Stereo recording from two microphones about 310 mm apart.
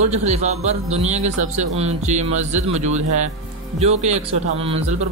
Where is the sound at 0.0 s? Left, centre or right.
Right.